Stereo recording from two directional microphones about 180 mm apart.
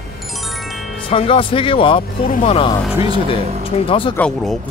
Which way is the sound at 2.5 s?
30° left (ahead or behind).